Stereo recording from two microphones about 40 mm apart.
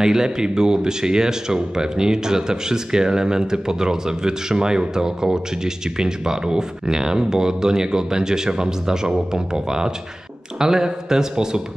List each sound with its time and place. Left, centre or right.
0.0 s speech: centre